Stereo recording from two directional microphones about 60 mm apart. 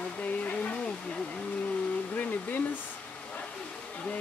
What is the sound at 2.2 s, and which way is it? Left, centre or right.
Speech, left.